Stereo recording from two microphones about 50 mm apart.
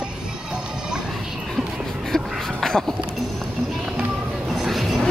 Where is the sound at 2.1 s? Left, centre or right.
Centre.